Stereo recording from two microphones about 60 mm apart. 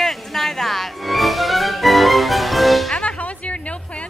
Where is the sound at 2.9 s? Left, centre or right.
Left.